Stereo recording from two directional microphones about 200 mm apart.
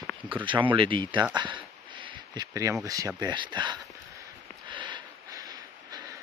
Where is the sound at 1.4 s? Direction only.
25° right (ahead or behind).